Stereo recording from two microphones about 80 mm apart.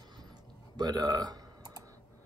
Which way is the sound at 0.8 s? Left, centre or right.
Right.